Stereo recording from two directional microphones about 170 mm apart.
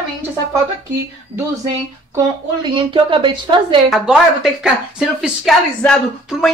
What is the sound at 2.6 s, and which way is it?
A woman's voice, 30° right (ahead or behind).